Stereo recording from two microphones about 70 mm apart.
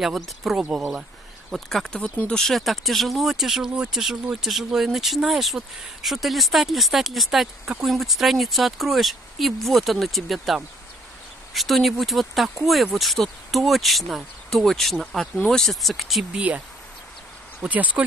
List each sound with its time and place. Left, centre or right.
0.0 s speech: centre
1.5 s speech: centre
2.0 s speech: centre
16.3 s speech: centre